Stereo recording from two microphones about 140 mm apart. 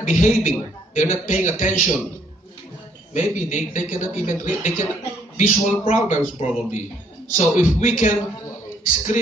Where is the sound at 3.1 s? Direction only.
60° left (ahead or behind).